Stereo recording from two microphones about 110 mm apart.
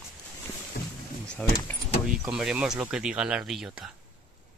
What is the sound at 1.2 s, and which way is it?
Speech, 10° left (ahead or behind).